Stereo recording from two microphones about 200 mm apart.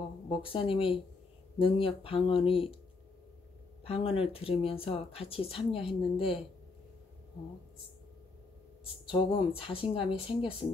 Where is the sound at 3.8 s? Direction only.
30° left (ahead or behind).